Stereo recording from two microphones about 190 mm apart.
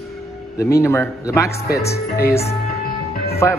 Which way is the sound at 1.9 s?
55° left (ahead or behind).